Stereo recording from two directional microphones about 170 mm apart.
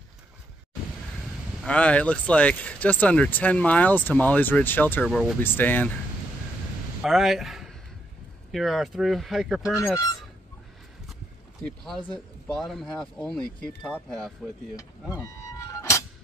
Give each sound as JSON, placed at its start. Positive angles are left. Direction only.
{"t": 1.1, "sound": "speech", "side_deg": 0}
{"t": 5.0, "sound": "speech", "side_deg": 0}
{"t": 7.0, "sound": "speech", "side_deg": 0}
{"t": 11.6, "sound": "speech", "side_deg": 0}
{"t": 15.1, "sound": "music", "side_deg": 15}